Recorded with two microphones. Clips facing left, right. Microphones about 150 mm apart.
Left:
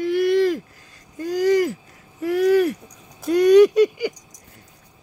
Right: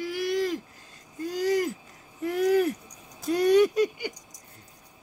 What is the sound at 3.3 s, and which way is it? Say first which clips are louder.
Speech: left 8 dB; 90° left.